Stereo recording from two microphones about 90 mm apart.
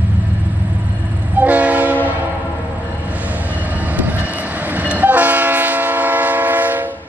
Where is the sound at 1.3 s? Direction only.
15° right (ahead or behind).